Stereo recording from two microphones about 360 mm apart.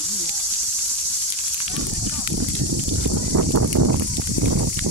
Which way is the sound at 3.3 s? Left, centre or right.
Right.